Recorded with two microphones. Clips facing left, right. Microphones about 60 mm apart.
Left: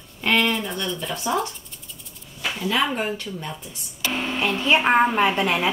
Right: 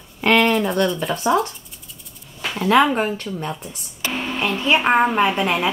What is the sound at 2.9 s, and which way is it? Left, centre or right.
Speech, right.